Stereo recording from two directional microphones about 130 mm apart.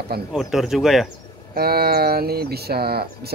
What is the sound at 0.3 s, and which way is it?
Speech, centre (ahead or behind).